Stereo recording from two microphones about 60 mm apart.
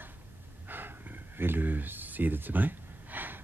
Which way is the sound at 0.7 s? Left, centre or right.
Right.